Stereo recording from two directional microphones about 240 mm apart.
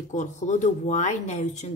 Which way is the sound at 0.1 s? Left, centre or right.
Left.